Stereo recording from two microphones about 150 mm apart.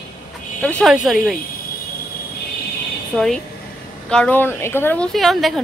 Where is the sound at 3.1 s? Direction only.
5° left (ahead or behind).